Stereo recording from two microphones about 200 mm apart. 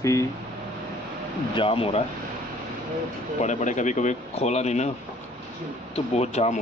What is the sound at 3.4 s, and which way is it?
Speech, 35° left (ahead or behind).